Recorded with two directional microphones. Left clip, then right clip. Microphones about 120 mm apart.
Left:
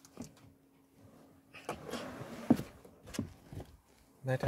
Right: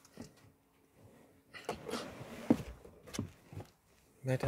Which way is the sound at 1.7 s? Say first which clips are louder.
Even; 30° right (ahead or behind).